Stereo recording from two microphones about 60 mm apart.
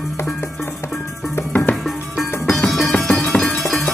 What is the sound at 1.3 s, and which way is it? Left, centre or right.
Music, left.